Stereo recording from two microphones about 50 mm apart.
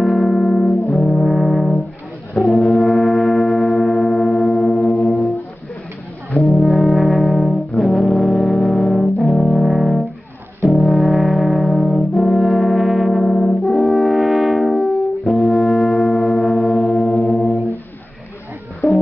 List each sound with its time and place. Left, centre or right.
0.0 s music: centre
0.9 s brass instrument: centre
5.0 s music: centre
6.4 s brass instrument: centre